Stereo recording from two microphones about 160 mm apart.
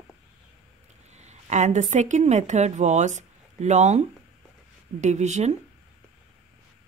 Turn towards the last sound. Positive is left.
turn(degrees=-45)  # may be behind; listen again after turning